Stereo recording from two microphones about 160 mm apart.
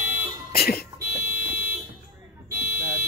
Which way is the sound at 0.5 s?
70° left (ahead or behind).